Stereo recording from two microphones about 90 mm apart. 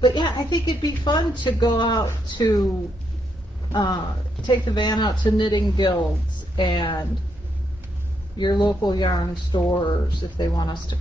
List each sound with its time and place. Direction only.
0.0 s speech: 55° left (ahead or behind)
3.7 s speech: 55° left (ahead or behind)
8.4 s a woman's voice: 55° left (ahead or behind)